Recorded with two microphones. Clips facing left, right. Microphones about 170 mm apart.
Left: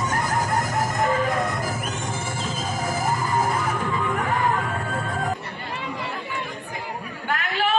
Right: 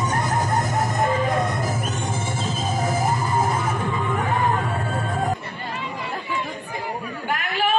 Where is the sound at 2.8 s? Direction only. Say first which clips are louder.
Right 2 dB; 20° right (ahead or behind).